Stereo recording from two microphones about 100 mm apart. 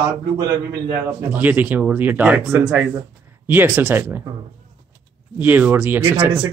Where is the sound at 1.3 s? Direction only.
15° right (ahead or behind).